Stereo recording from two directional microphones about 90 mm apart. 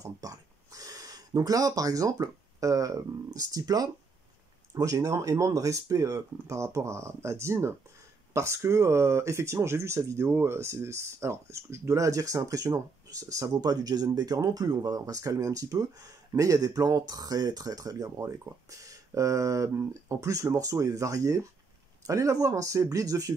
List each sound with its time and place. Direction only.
0.0 s speech: 40° right (ahead or behind)